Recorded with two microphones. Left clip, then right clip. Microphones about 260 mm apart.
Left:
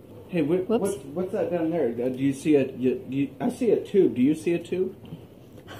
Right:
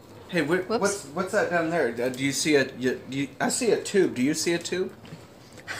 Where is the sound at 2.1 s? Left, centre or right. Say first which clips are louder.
Even; right.